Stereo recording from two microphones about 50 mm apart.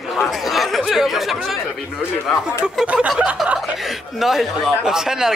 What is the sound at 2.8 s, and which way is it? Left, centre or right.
Speech, right.